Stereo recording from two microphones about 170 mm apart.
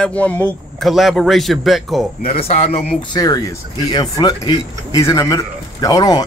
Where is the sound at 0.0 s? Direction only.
10° left (ahead or behind).